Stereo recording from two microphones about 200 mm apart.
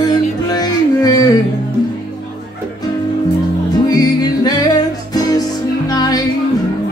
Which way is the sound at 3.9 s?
20° left (ahead or behind).